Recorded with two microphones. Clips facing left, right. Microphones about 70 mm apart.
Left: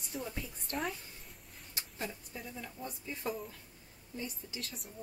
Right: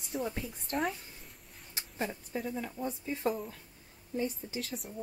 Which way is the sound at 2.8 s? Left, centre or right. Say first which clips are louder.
Right 7 dB; right.